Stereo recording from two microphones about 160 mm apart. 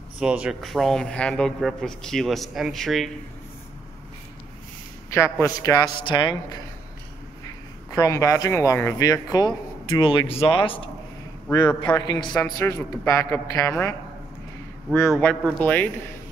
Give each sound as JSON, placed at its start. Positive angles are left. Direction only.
{"t": 0.2, "sound": "speech", "side_deg": -5}
{"t": 5.1, "sound": "speech", "side_deg": 20}
{"t": 7.9, "sound": "a man's voice", "side_deg": 20}
{"t": 15.0, "sound": "a man's voice", "side_deg": 10}